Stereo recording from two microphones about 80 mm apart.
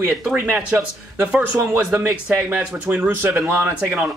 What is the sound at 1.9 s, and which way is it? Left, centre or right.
Speech, right.